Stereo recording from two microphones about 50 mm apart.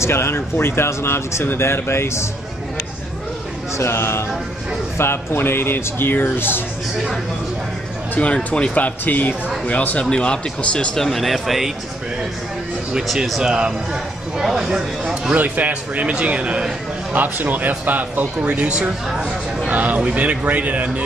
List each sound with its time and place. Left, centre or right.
0.0 s speech: left
3.7 s speech: left
8.2 s speech: left
10.0 s speech: centre
11.0 s speech: centre
13.0 s speech: centre
13.4 s speech: centre
15.3 s a man's voice: right
17.1 s speech: right